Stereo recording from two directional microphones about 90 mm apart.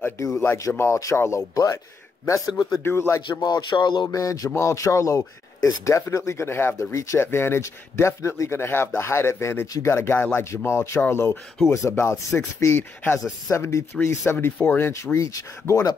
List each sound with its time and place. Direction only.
0.2 s speech: 35° left (ahead or behind)
2.8 s speech: 25° left (ahead or behind)
3.2 s speech: 55° left (ahead or behind)
4.1 s speech: 40° left (ahead or behind)